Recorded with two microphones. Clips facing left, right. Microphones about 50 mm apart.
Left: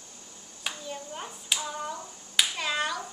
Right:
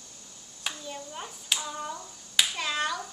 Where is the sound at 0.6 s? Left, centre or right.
Centre.